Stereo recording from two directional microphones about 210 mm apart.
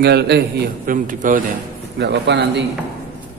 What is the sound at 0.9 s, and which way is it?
Speech, 40° right (ahead or behind).